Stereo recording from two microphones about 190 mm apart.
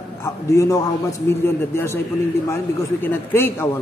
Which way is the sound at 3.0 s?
10° left (ahead or behind).